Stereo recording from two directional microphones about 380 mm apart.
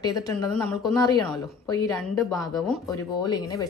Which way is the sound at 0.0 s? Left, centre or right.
Centre.